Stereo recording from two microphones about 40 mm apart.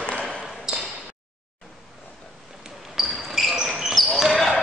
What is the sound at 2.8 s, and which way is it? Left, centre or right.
Basketball bounce, centre.